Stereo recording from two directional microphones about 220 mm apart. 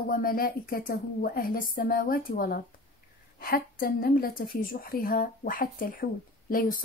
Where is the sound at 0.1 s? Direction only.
40° left (ahead or behind).